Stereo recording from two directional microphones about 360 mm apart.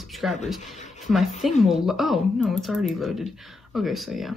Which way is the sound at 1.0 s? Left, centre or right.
Centre.